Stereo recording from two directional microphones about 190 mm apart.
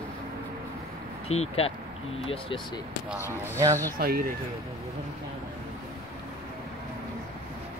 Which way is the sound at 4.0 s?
55° right (ahead or behind).